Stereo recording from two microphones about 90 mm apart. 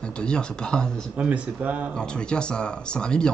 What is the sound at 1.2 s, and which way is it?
Speech, 15° right (ahead or behind).